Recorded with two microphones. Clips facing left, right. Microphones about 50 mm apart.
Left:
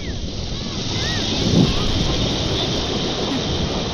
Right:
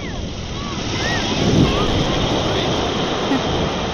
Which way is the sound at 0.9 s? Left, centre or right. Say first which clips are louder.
Right 4 dB; right.